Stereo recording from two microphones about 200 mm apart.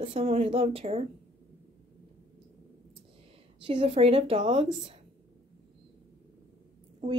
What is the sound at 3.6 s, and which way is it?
Speech, 30° right (ahead or behind).